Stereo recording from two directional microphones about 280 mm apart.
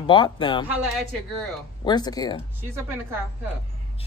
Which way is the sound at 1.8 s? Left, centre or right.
Centre.